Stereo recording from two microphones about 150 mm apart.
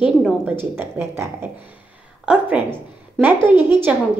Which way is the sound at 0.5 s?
15° right (ahead or behind).